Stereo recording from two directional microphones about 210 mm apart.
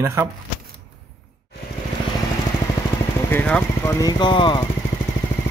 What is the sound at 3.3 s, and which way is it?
Speech, 10° left (ahead or behind).